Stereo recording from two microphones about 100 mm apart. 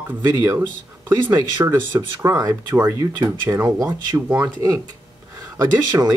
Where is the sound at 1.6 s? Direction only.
30° right (ahead or behind).